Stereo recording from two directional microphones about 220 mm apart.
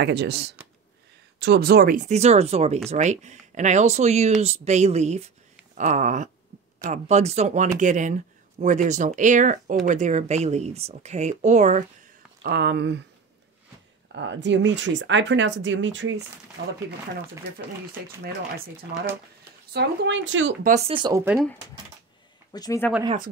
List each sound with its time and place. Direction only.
0.0 s speech: 50° right (ahead or behind); by 11.8 s 30° right (ahead or behind)
12.4 s speech: 50° right (ahead or behind)
14.1 s speech: 55° right (ahead or behind)
19.7 s speech: 50° right (ahead or behind)
20.6 s speech: 30° right (ahead or behind)
21.2 s speech: 10° right (ahead or behind)
22.5 s speech: 15° left (ahead or behind)